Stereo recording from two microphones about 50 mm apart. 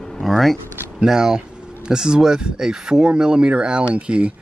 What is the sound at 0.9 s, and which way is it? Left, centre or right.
Speech, centre.